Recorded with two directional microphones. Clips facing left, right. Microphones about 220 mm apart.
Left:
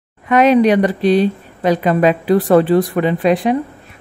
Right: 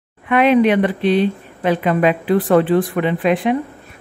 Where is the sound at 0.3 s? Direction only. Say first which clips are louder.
Left 2 dB; 40° left (ahead or behind).